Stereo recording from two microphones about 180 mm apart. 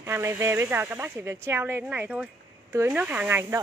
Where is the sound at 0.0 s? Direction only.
15° right (ahead or behind).